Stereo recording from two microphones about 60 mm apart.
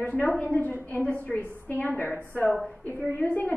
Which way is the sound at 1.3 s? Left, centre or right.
Centre.